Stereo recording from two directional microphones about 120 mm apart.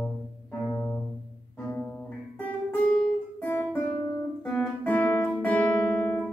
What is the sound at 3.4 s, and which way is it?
Music, 15° left (ahead or behind).